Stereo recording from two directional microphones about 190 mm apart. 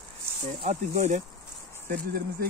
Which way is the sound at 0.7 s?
40° right (ahead or behind).